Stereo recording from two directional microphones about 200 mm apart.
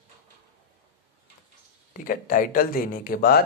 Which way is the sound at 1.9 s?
45° left (ahead or behind).